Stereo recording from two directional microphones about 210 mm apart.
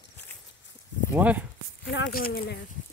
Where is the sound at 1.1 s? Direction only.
10° right (ahead or behind).